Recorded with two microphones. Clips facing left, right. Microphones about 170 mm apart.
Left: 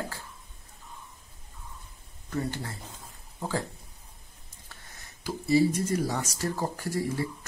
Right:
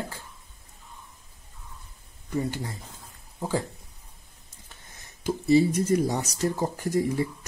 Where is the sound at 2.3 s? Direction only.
15° right (ahead or behind).